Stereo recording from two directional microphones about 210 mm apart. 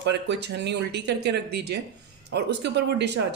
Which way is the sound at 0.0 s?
55° right (ahead or behind).